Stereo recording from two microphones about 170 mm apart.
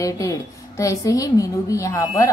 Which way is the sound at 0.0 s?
20° left (ahead or behind).